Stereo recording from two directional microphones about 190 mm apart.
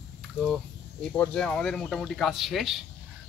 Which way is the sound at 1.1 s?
5° left (ahead or behind).